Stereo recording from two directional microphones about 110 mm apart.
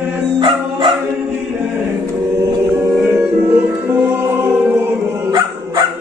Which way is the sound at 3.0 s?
20° right (ahead or behind).